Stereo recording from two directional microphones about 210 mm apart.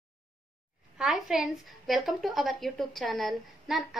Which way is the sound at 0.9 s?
Centre (ahead or behind).